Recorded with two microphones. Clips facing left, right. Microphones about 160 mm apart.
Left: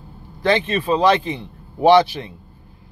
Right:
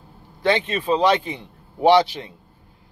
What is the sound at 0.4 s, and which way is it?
Speech, 15° right (ahead or behind).